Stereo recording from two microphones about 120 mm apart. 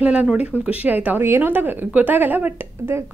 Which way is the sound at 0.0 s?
10° right (ahead or behind).